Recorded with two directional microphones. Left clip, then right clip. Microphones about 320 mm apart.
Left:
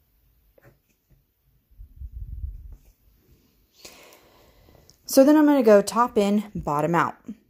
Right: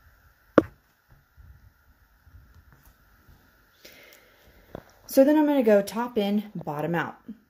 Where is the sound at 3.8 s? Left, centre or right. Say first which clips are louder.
Left 3 dB; centre.